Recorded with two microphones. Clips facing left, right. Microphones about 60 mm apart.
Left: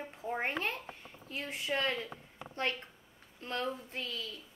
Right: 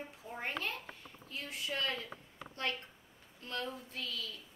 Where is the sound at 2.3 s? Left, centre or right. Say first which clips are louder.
Left 4 dB; left.